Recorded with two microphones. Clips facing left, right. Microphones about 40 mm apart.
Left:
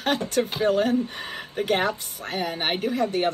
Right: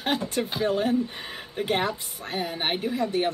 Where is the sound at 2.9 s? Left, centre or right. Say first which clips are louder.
Left 2 dB; left.